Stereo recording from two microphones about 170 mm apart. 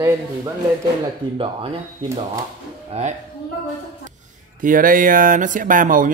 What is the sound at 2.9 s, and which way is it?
Speech, 40° right (ahead or behind).